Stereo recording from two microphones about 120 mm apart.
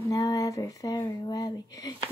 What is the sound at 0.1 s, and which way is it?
Speech, 30° left (ahead or behind).